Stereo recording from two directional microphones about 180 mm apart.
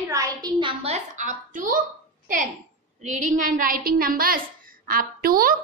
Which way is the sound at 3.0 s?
40° right (ahead or behind).